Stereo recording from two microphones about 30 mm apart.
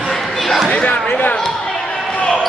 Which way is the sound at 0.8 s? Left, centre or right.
Left.